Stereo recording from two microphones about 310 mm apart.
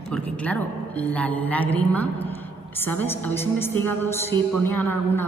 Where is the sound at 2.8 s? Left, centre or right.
Centre.